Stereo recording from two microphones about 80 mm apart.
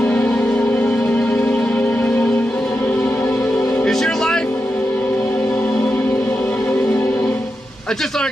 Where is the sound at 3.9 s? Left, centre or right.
Centre.